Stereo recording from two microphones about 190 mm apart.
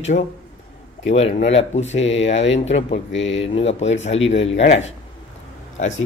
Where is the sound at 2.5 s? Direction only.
35° left (ahead or behind).